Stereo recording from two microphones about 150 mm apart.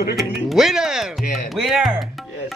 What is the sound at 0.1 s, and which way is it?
Speech, centre (ahead or behind).